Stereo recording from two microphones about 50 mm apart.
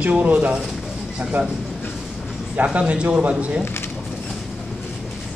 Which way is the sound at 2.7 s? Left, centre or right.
Right.